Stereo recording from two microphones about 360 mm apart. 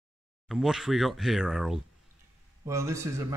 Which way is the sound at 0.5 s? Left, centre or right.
Centre.